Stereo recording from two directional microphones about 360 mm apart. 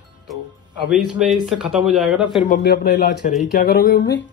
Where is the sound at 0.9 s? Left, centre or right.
Centre.